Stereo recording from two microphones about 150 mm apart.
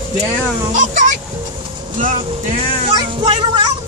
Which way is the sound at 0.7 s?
55° right (ahead or behind).